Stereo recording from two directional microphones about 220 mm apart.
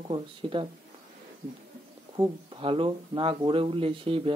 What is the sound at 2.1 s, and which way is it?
Speech, 20° right (ahead or behind).